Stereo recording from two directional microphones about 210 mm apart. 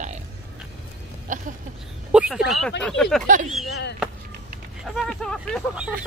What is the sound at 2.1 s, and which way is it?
Speech, 5° right (ahead or behind).